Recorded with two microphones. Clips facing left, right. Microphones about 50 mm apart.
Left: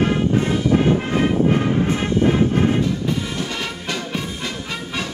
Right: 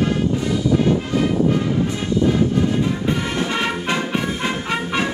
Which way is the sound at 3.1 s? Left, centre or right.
Right.